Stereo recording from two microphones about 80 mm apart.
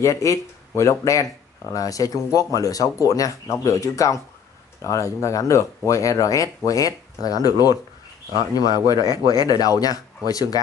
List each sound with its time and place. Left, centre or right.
0.0 s speech: left